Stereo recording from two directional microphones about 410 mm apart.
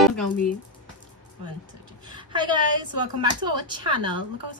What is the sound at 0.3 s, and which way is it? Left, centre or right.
Speech, centre.